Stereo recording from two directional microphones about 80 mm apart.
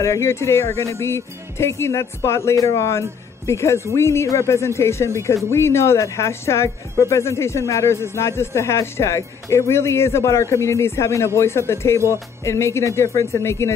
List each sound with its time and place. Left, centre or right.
0.0 s speech: left